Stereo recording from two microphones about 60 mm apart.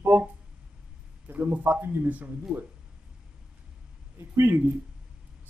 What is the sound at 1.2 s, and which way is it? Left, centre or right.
Speech, right.